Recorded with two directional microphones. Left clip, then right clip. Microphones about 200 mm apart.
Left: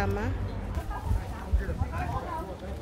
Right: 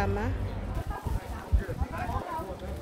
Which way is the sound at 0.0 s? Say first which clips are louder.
Even; centre (ahead or behind).